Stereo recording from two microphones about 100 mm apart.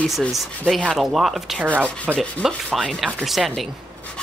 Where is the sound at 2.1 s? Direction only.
5° right (ahead or behind).